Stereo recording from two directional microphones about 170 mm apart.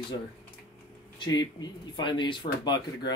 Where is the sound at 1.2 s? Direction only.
25° left (ahead or behind).